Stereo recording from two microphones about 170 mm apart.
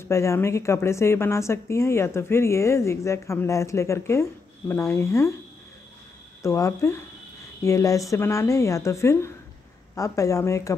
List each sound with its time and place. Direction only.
0.0 s speech: 15° left (ahead or behind)
6.4 s speech: 15° left (ahead or behind)